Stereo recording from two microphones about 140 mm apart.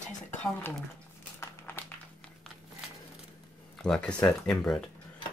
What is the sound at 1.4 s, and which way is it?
Crumpling, 20° left (ahead or behind).